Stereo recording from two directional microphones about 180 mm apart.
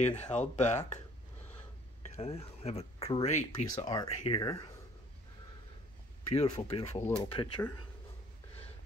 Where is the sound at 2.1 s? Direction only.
35° left (ahead or behind).